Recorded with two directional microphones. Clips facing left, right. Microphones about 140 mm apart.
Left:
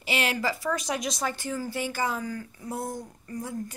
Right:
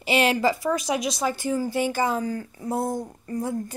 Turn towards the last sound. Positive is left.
turn(degrees=-30)  # may be behind; listen again after turning